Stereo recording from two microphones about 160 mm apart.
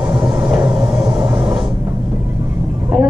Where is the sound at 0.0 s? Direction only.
20° right (ahead or behind).